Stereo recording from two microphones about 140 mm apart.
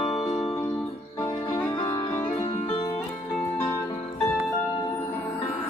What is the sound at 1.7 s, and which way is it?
Music, 25° left (ahead or behind).